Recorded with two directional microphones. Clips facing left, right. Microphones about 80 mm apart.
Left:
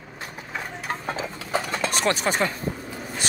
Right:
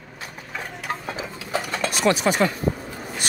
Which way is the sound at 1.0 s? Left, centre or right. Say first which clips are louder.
Left 1 dB; left.